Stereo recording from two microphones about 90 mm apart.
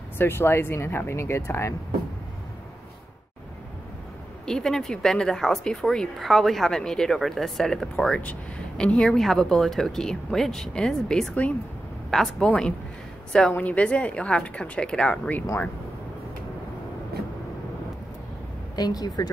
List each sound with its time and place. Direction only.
0.2 s speech: 25° left (ahead or behind)
4.5 s speech: 5° left (ahead or behind)
18.8 s speech: 45° left (ahead or behind)